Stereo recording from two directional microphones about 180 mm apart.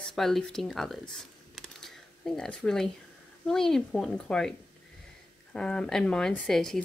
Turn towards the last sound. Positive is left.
turn(degrees=5)  # may be behind; listen again after turning